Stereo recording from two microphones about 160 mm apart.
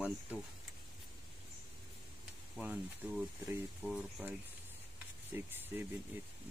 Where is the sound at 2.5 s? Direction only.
10° right (ahead or behind).